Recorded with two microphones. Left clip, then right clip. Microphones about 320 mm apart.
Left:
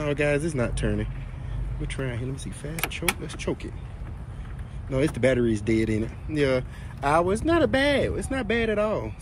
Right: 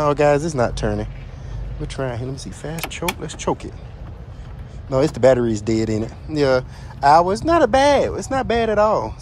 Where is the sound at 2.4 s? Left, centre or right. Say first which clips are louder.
Right 3 dB; centre.